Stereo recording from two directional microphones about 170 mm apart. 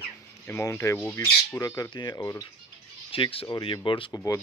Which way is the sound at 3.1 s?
35° left (ahead or behind).